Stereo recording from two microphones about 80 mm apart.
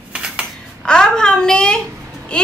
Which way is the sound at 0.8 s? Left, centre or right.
Centre.